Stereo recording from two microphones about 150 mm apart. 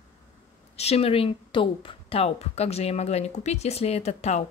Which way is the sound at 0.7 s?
40° left (ahead or behind).